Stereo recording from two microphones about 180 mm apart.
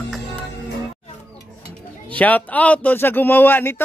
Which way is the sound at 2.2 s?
10° left (ahead or behind).